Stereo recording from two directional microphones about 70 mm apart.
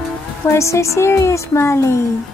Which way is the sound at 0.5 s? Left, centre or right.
Left.